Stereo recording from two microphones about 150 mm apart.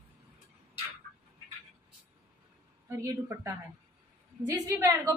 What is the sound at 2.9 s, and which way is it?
A woman's voice, 20° right (ahead or behind).